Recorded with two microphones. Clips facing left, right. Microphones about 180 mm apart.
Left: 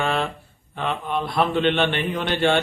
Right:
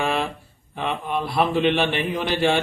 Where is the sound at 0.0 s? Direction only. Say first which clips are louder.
Even; 5° right (ahead or behind).